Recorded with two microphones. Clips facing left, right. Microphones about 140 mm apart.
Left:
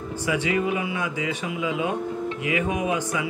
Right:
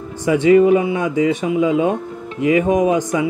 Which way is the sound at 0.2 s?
35° right (ahead or behind).